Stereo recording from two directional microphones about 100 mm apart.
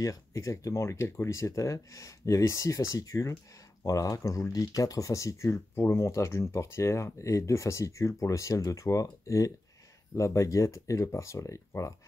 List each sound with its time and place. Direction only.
0.0 s speech: 35° left (ahead or behind)